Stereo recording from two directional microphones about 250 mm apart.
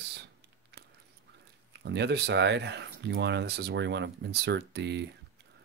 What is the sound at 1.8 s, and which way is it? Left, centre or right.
Speech, right.